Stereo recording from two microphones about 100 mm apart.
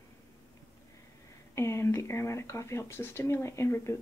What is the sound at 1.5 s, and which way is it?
Speech, 30° left (ahead or behind).